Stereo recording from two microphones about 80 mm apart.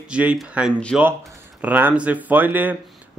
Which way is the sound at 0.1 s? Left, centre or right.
Centre.